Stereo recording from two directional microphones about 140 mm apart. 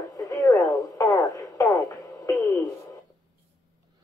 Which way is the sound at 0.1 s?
25° left (ahead or behind).